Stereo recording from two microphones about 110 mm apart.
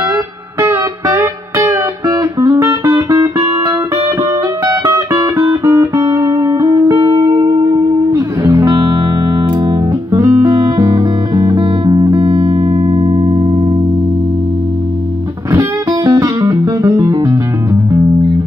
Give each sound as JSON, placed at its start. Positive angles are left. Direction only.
{"t": 0.1, "sound": "music", "side_deg": -30}
{"t": 8.6, "sound": "music", "side_deg": -50}
{"t": 10.1, "sound": "music", "side_deg": -25}
{"t": 15.5, "sound": "music", "side_deg": -35}